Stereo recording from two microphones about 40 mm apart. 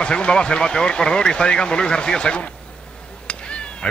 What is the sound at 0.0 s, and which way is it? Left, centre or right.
Speech, left.